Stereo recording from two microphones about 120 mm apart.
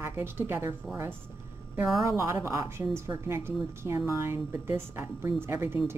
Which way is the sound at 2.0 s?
25° right (ahead or behind).